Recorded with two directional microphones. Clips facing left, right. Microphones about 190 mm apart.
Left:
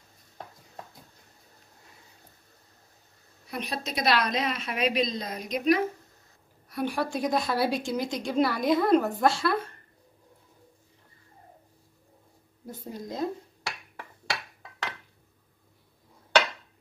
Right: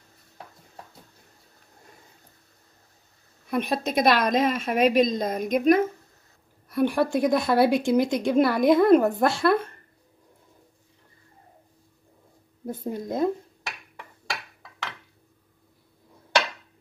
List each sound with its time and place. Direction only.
3.4 s a woman's voice: 50° right (ahead or behind)
12.6 s a woman's voice: 55° right (ahead or behind)